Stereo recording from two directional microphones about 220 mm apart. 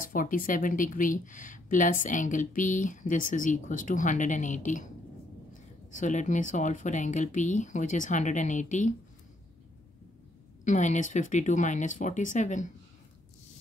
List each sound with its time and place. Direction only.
0.1 s speech: 40° left (ahead or behind)
5.9 s speech: 35° left (ahead or behind)
10.6 s speech: 35° left (ahead or behind)